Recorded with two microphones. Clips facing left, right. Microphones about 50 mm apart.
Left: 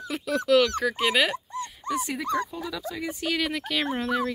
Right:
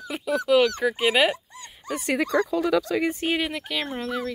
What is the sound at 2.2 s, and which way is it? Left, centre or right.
Speech, right.